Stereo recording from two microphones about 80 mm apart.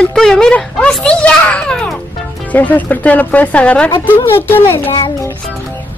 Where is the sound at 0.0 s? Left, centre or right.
Centre.